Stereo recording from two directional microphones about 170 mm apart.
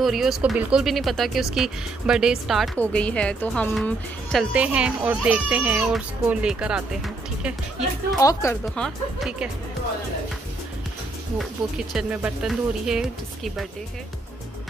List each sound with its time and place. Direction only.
0.0 s speech: centre (ahead or behind)
8.2 s speech: 20° left (ahead or behind)
8.7 s speech: centre (ahead or behind)
11.9 s speech: 5° right (ahead or behind)